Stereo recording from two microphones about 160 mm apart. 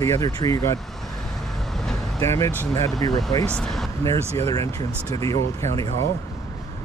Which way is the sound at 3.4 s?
5° left (ahead or behind).